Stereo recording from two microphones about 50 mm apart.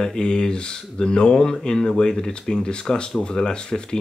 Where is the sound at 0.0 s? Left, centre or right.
Centre.